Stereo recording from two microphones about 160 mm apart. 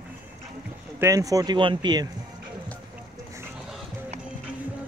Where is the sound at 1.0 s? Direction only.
20° right (ahead or behind).